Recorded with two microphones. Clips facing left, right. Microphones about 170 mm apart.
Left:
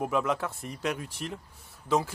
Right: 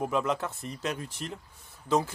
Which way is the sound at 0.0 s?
5° left (ahead or behind).